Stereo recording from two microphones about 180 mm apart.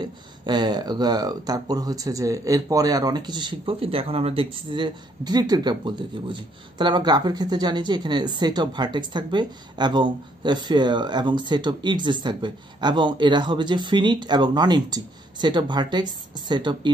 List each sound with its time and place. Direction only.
0.0 s speech: 25° right (ahead or behind)